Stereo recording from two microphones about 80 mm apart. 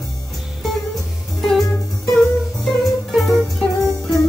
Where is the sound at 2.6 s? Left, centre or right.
Centre.